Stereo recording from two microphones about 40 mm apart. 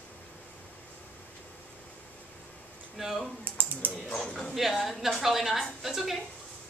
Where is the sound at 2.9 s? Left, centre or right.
Centre.